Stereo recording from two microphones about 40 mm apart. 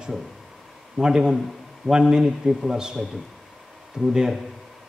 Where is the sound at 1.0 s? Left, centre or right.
Centre.